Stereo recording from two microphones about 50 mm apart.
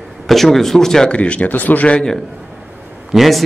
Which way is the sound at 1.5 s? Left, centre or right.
Left.